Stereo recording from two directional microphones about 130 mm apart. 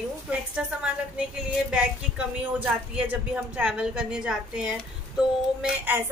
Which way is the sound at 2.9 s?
10° right (ahead or behind).